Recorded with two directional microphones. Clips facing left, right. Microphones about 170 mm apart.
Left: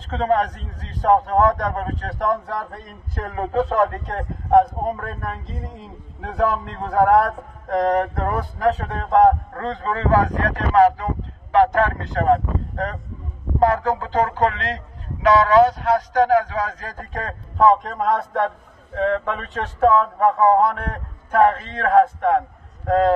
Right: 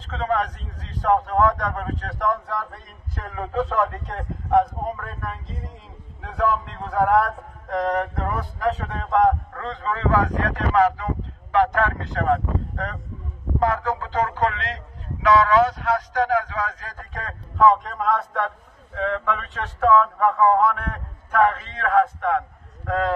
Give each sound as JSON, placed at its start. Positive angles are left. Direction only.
{"t": 0.1, "sound": "speech", "side_deg": 40}